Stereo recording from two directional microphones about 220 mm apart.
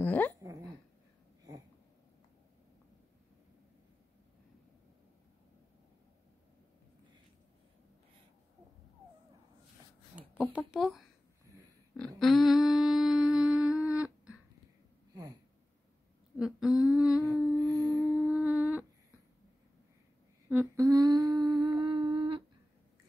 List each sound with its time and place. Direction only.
0.0 s dog: 10° left (ahead or behind)
0.4 s dog: 15° right (ahead or behind)
10.1 s a sound: 5° right (ahead or behind)
12.2 s humming: centre (ahead or behind)
16.3 s humming: 5° right (ahead or behind)
17.6 s mantra: 15° right (ahead or behind)
20.4 s humming: 10° right (ahead or behind)